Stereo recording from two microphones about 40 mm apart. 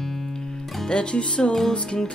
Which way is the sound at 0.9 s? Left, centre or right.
Left.